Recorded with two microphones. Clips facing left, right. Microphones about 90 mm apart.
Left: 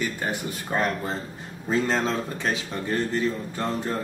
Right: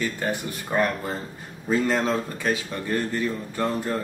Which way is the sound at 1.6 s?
25° left (ahead or behind).